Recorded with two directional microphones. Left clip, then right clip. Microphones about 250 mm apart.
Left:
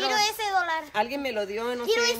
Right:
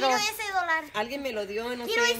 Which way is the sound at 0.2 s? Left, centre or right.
Left.